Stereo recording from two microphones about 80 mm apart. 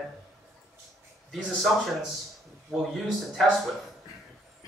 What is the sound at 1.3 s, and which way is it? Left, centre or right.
Speech, centre.